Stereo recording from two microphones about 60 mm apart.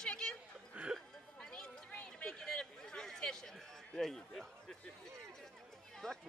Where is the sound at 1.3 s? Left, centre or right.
Centre.